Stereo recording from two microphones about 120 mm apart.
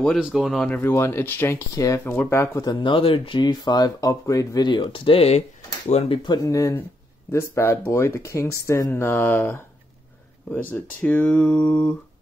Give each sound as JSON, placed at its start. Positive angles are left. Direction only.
{"t": 0.2, "sound": "speech", "side_deg": -5}
{"t": 0.7, "sound": "speech", "side_deg": 15}
{"t": 1.8, "sound": "speech", "side_deg": 30}
{"t": 3.3, "sound": "speech", "side_deg": 35}